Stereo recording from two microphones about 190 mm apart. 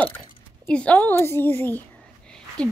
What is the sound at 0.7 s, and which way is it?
A child's voice, 5° left (ahead or behind).